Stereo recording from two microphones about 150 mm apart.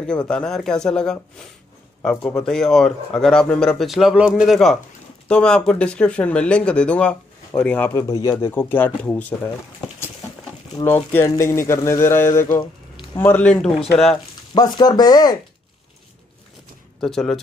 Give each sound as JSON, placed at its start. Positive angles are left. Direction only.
{"t": 0.0, "sound": "speech", "side_deg": 5}
{"t": 11.2, "sound": "a man's voice", "side_deg": 20}
{"t": 14.5, "sound": "a man's voice", "side_deg": 30}
{"t": 17.0, "sound": "speech", "side_deg": 5}